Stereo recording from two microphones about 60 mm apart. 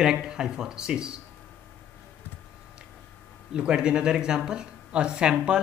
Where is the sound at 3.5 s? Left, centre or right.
Centre.